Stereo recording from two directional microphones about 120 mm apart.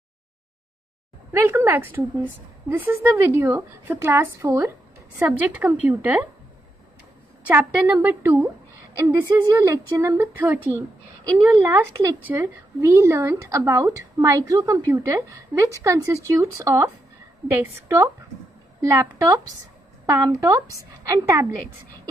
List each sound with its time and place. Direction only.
1.3 s a woman's voice: 20° right (ahead or behind)
5.2 s a woman's voice: 15° right (ahead or behind)
7.4 s a woman's voice: 15° right (ahead or behind)
8.9 s a woman's voice: 30° right (ahead or behind)
11.7 s a woman's voice: 25° right (ahead or behind)